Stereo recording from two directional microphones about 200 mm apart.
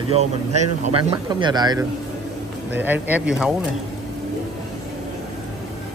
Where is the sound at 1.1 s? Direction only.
20° right (ahead or behind).